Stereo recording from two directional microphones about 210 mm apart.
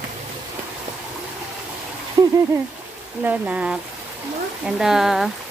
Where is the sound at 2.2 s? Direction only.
20° right (ahead or behind).